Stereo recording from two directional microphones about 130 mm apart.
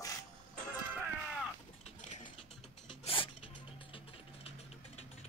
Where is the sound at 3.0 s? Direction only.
45° left (ahead or behind).